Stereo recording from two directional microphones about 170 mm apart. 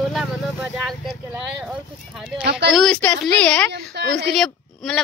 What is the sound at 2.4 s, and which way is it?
Speech, 85° right.